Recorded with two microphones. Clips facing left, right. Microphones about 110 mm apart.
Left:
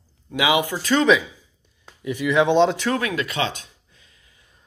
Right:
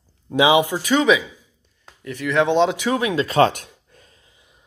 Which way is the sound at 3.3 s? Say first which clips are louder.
Right 9 dB; 55° right (ahead or behind).